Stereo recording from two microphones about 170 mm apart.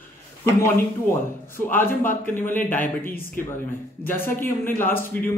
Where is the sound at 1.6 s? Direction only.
10° left (ahead or behind).